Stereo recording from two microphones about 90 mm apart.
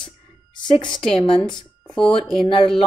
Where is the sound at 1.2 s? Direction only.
70° left (ahead or behind).